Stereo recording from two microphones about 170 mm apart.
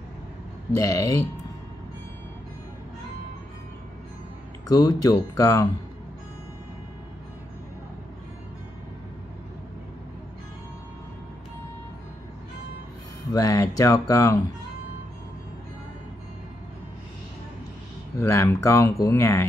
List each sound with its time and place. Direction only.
0.7 s speech: 20° left (ahead or behind)
4.6 s speech: 20° left (ahead or behind)
13.3 s speech: 20° left (ahead or behind)
18.1 s speech: 15° left (ahead or behind)